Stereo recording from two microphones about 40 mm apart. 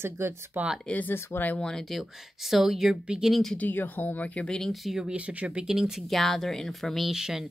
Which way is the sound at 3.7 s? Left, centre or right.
Left.